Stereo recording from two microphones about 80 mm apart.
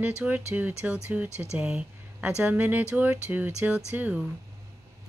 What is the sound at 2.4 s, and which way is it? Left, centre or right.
Speech, right.